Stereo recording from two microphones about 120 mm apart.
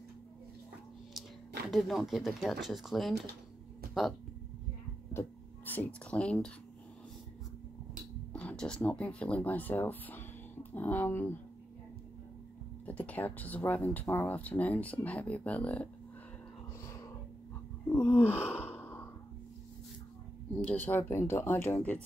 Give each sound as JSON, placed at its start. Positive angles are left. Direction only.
{"t": 1.7, "sound": "speech", "side_deg": 0}
{"t": 6.0, "sound": "speech", "side_deg": 10}
{"t": 8.3, "sound": "speech", "side_deg": 10}
{"t": 12.8, "sound": "speech", "side_deg": 10}
{"t": 16.8, "sound": "a sound", "side_deg": 25}
{"t": 20.5, "sound": "speech", "side_deg": 15}